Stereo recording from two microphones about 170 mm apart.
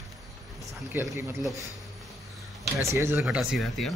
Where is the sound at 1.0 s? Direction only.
10° right (ahead or behind).